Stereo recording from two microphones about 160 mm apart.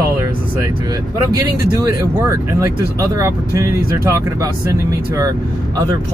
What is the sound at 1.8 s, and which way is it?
Speech, 20° right (ahead or behind).